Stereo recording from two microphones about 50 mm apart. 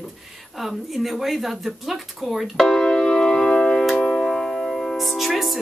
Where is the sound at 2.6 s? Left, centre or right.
Centre.